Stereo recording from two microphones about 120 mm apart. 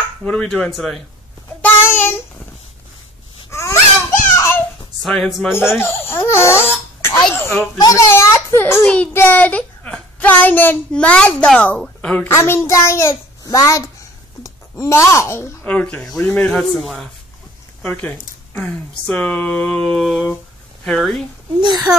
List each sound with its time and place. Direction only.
0.2 s speech: 5° left (ahead or behind)
1.6 s child singing: 20° left (ahead or behind)
3.4 s sneeze: 25° left (ahead or behind)
4.4 s a sound: 20° left (ahead or behind)
5.0 s speech: 5° left (ahead or behind)
5.5 s baby laughter: 20° left (ahead or behind)
7.3 s a child's voice: 20° left (ahead or behind)
8.8 s a child's voice: 10° left (ahead or behind)
12.3 s a child's voice: 20° left (ahead or behind)
16.5 s speech: centre (ahead or behind)
18.5 s a child's voice: 10° left (ahead or behind)
21.5 s speech: 40° right (ahead or behind)